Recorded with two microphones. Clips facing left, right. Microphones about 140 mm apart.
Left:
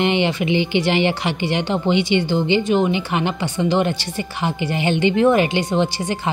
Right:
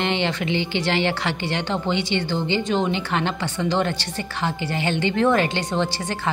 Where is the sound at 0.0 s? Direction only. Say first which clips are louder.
Left 5 dB; 15° left (ahead or behind).